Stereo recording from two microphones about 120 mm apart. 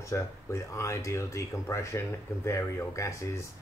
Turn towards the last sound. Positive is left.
turn(degrees=25)  # may be behind; listen again after turning